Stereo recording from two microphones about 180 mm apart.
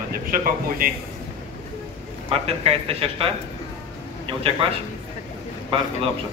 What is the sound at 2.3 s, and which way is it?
Speech, 35° right (ahead or behind).